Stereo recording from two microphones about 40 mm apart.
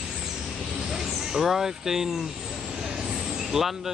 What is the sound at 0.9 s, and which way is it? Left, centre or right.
Speech, centre.